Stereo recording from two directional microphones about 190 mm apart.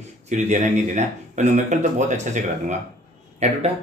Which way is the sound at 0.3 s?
40° right (ahead or behind).